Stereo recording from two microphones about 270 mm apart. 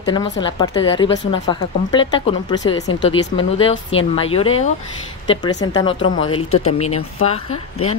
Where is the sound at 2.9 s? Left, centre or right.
Left.